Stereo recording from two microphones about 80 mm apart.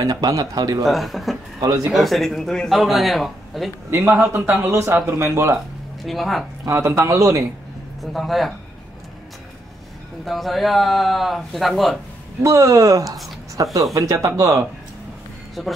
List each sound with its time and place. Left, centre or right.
0.0 s speech: right
0.8 s speech: centre
1.6 s speech: right
1.9 s speech: centre
3.9 s speech: right
6.0 s speech: centre
6.7 s speech: right
8.0 s speech: centre
10.2 s speech: centre
12.4 s speech: right
13.6 s speech: right
13.9 s speech: right
15.6 s speech: centre